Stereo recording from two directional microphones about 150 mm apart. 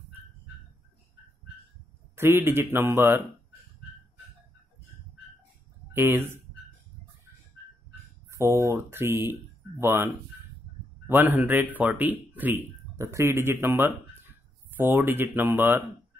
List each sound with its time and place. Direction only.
2.1 s speech: 15° right (ahead or behind)
5.9 s speech: 15° right (ahead or behind)
8.3 s speech: 20° right (ahead or behind)